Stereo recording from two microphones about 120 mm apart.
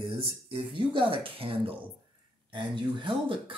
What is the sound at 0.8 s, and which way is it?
Speech, 45° right (ahead or behind).